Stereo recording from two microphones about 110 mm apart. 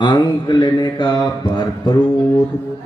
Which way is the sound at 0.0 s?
45° left (ahead or behind).